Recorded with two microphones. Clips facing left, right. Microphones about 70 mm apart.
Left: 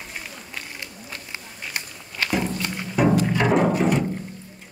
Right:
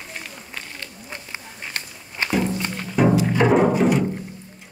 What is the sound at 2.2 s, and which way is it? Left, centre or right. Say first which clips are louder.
Walk: right 1 dB; right.